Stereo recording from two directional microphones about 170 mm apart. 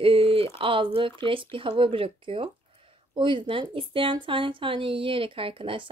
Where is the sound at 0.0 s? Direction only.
35° right (ahead or behind).